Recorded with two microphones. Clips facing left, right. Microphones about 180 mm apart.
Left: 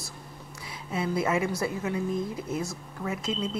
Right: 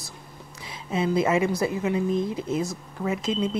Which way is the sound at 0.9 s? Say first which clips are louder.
Right 5 dB; 20° right (ahead or behind).